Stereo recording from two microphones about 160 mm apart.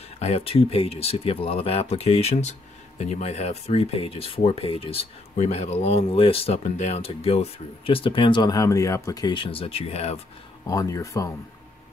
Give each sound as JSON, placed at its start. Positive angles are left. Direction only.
{"t": 0.2, "sound": "speech", "side_deg": 40}
{"t": 10.7, "sound": "speech", "side_deg": 20}